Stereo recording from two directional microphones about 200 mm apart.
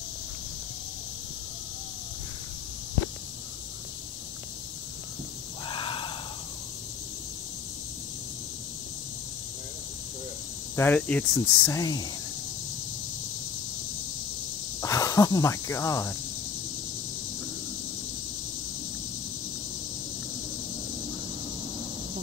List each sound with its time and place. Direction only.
5.7 s a sound: 25° left (ahead or behind)
10.8 s speech: 5° left (ahead or behind)
14.8 s speech: 15° left (ahead or behind)